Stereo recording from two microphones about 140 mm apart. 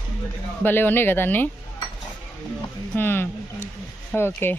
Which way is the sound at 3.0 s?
15° left (ahead or behind).